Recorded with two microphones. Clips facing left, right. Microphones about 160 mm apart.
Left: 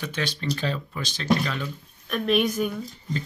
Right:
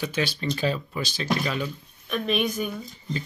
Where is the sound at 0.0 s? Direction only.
5° right (ahead or behind).